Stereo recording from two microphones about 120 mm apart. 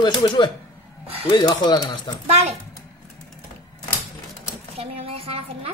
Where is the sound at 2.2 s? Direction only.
65° right (ahead or behind).